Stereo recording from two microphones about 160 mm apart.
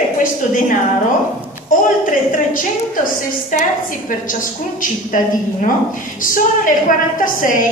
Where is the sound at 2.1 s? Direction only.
55° left (ahead or behind).